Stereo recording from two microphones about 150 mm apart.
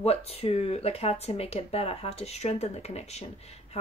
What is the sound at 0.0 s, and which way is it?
Speech, 40° left (ahead or behind).